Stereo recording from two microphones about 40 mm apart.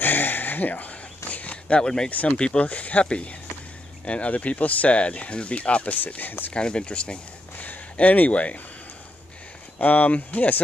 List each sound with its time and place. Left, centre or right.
0.0 s a sound: left
1.8 s speech: centre
2.0 s speech: left
2.3 s speech: left
2.6 s speech: left
5.9 s speech: left
6.5 s speech: left
7.5 s a sound: left
9.8 s speech: left